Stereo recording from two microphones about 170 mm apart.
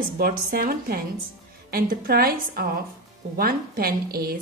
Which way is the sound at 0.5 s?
60° right (ahead or behind).